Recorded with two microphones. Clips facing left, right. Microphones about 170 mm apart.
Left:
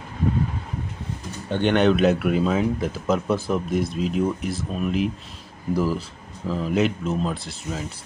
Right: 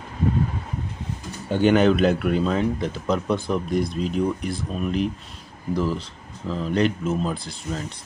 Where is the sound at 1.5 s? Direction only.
5° right (ahead or behind).